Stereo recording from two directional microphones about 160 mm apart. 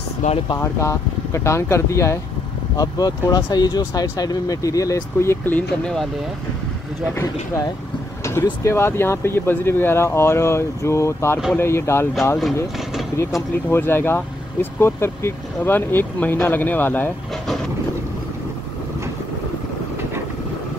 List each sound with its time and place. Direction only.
0.6 s speech: 20° left (ahead or behind)
8.4 s speech: 15° left (ahead or behind)
13.7 s speech: 15° left (ahead or behind)